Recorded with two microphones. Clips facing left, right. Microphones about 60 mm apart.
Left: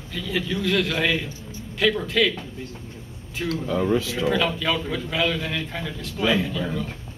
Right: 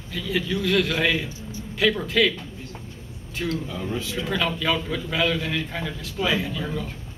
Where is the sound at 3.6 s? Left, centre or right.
Left.